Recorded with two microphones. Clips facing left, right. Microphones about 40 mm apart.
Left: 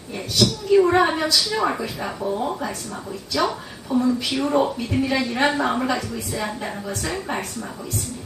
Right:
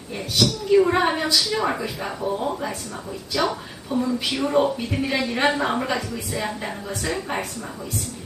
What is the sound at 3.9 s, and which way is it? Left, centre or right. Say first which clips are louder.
Speech: left 3 dB; right.